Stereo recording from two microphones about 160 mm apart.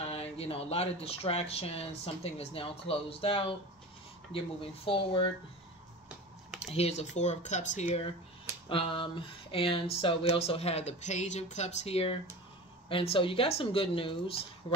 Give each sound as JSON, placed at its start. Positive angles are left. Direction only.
{"t": 0.0, "sound": "speech", "side_deg": 40}
{"t": 6.6, "sound": "speech", "side_deg": 40}
{"t": 8.6, "sound": "speech", "side_deg": 35}